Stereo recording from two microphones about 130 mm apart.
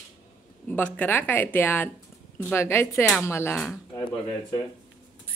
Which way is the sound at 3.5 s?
Centre (ahead or behind).